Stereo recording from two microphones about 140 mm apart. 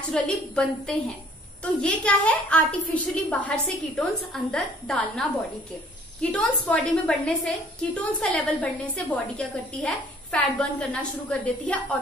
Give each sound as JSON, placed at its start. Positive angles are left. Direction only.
{"t": 0.1, "sound": "a woman's voice", "side_deg": 5}
{"t": 6.3, "sound": "a woman's voice", "side_deg": 10}